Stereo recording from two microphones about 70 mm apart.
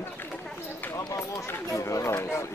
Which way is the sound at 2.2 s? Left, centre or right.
Left.